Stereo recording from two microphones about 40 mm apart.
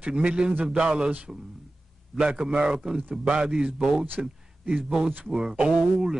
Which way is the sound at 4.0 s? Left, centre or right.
Right.